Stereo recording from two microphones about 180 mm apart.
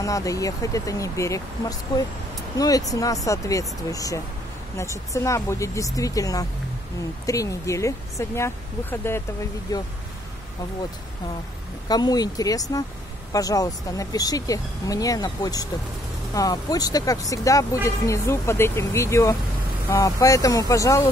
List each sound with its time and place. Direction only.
0.0 s speech: 20° left (ahead or behind)
11.9 s speech: 20° left (ahead or behind)